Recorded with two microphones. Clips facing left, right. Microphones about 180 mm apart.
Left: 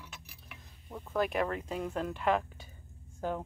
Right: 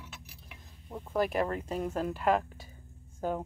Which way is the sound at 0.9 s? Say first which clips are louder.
Right 2 dB; 10° right (ahead or behind).